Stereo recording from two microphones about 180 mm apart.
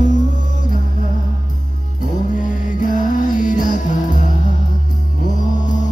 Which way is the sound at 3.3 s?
45° left (ahead or behind).